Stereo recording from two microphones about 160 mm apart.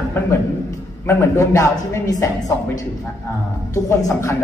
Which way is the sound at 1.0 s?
15° left (ahead or behind).